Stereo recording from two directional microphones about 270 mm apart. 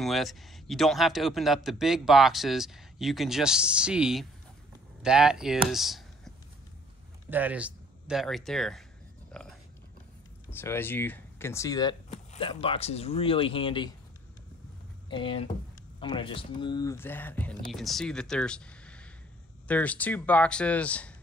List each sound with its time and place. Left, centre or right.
0.0 s a man's voice: centre
10.5 s speech: centre
15.0 s a man's voice: centre